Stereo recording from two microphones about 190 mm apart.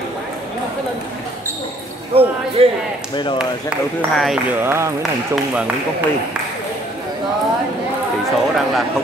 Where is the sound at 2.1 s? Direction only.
30° right (ahead or behind).